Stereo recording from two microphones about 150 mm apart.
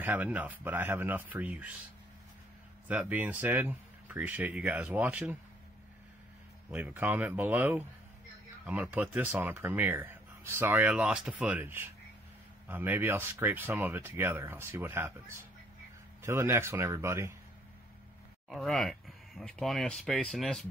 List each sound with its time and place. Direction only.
0.0 s speech: 10° right (ahead or behind)
2.9 s speech: 10° right (ahead or behind)
6.7 s speech: 10° right (ahead or behind)
18.5 s speech: centre (ahead or behind)